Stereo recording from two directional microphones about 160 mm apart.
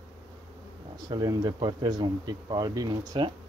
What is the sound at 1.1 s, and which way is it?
Speech, 25° right (ahead or behind).